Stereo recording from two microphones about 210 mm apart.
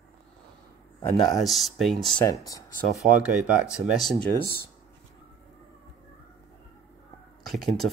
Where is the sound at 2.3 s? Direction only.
15° left (ahead or behind).